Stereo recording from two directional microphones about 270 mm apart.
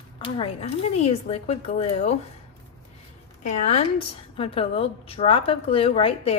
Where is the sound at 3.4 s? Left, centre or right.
Left.